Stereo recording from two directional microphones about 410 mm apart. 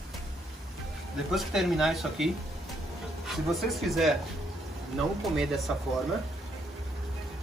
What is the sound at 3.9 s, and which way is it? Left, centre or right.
Speech, centre.